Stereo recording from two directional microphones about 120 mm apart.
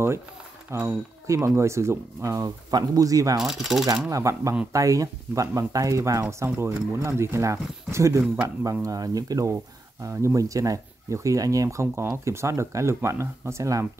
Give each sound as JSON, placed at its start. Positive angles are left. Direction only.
{"t": 0.7, "sound": "speech", "side_deg": -20}
{"t": 3.3, "sound": "speech", "side_deg": 0}
{"t": 4.1, "sound": "speech", "side_deg": -25}